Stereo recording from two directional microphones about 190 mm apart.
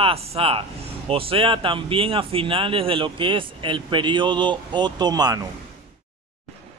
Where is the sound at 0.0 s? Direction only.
30° right (ahead or behind).